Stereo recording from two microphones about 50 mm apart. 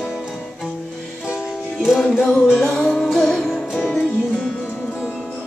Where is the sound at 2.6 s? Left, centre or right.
Centre.